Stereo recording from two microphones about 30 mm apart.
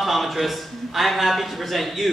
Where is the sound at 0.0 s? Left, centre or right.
Centre.